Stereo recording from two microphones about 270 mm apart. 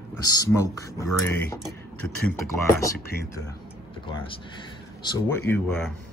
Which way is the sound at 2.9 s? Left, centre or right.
Left.